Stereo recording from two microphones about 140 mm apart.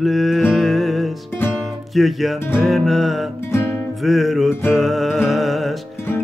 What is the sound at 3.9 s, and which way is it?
Music, centre (ahead or behind).